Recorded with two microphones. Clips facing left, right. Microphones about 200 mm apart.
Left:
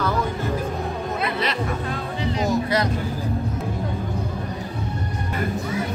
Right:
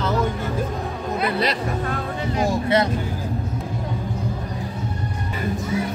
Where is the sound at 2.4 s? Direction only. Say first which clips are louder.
Right 2 dB; 25° right (ahead or behind).